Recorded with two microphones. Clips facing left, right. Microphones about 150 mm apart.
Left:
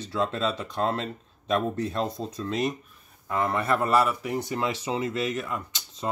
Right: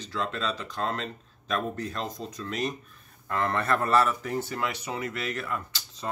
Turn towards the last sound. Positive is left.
turn(degrees=20)  # may be behind; listen again after turning